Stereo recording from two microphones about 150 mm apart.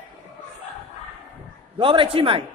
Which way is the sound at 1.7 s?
35° right (ahead or behind).